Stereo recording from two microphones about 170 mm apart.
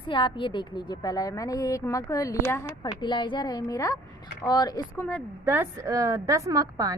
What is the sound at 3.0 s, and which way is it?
A woman's voice, 30° left (ahead or behind).